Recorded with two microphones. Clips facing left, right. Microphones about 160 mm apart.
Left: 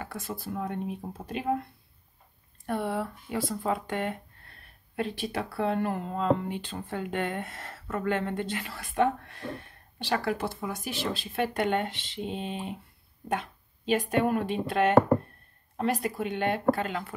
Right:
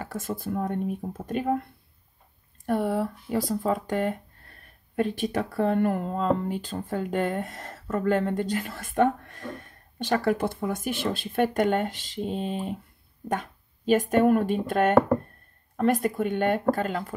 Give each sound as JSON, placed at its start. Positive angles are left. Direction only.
{"t": 0.0, "sound": "speech", "side_deg": -45}